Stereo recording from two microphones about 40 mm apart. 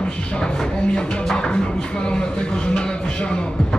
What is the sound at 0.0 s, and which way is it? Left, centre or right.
Music, left.